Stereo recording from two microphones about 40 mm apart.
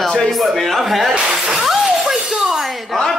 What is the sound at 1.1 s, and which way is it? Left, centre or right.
Speech, right.